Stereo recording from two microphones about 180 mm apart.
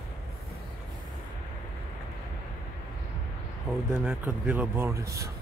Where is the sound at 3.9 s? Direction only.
5° right (ahead or behind).